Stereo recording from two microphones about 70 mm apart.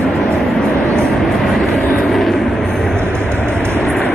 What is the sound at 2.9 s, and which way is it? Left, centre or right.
Vehicle, right.